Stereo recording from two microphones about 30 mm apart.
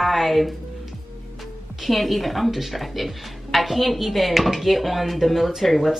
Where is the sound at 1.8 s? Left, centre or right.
Centre.